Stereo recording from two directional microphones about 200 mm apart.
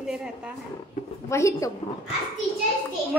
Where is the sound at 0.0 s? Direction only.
5° right (ahead or behind).